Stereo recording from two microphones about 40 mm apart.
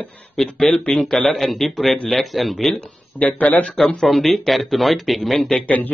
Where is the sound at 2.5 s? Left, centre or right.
Centre.